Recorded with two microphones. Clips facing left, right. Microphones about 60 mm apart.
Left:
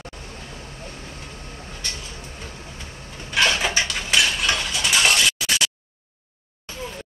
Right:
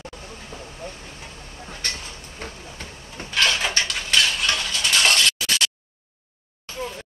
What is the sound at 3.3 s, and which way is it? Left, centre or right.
Cutlery, centre.